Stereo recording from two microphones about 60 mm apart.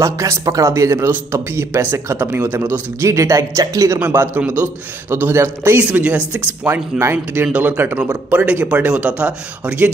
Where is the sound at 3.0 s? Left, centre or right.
Right.